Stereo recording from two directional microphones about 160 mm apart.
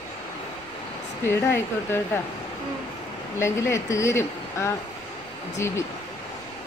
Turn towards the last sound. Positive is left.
turn(degrees=15)  # may be behind; listen again after turning